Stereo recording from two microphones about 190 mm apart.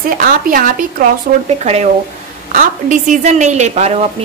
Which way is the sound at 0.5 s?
45° right (ahead or behind).